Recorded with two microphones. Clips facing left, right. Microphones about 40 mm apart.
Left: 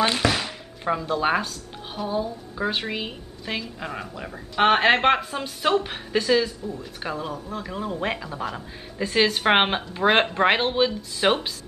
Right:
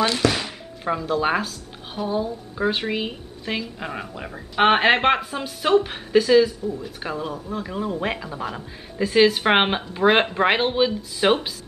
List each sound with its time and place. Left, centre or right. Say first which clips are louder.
0.0 s speech: right 1 dB; centre
0.3 s thunk: even; centre
2.0 s speech: right 2 dB; centre